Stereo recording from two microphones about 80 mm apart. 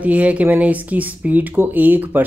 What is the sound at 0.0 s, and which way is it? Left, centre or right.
Speech, centre.